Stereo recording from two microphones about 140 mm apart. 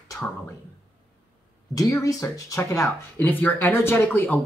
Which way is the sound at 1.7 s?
25° left (ahead or behind).